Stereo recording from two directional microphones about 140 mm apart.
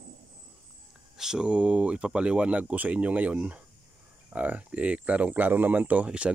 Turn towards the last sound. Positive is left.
turn(degrees=-10)  # may be behind; listen again after turning